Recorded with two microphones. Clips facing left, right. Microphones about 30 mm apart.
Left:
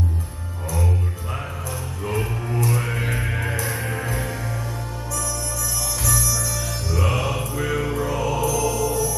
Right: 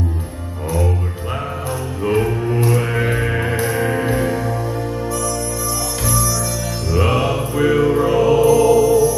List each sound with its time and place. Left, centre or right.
2.7 s music: right
7.0 s music: right